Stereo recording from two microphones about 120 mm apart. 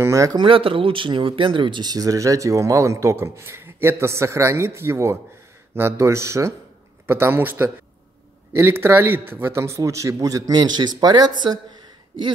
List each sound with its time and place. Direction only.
0.0 s speech: 25° right (ahead or behind)
0.4 s speech: 45° right (ahead or behind)